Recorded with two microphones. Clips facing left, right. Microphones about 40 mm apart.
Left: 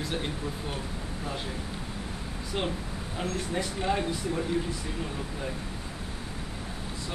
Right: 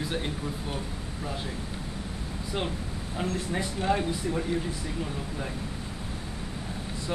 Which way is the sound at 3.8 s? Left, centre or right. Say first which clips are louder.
Right 3 dB; centre.